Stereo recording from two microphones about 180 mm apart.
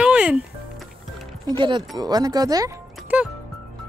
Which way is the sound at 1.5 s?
25° right (ahead or behind).